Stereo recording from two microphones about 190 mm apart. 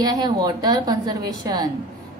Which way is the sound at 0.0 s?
20° right (ahead or behind).